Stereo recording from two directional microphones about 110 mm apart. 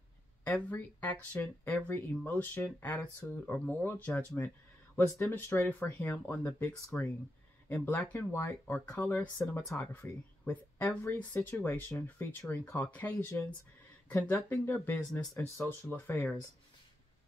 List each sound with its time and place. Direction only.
0.4 s speech: 15° left (ahead or behind)